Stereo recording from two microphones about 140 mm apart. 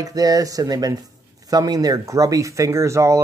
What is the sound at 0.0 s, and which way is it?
Speech, 25° right (ahead or behind).